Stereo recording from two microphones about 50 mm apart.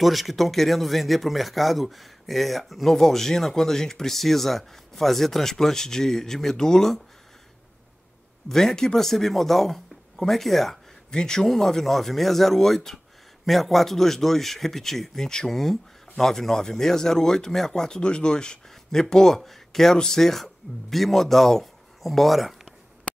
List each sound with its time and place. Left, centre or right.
0.0 s speech: centre
8.5 s speech: centre
23.1 s a sound: centre